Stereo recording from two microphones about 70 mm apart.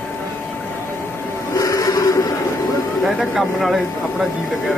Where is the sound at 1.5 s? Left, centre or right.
Left.